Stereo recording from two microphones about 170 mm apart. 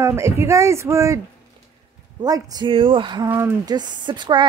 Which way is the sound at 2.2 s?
25° right (ahead or behind).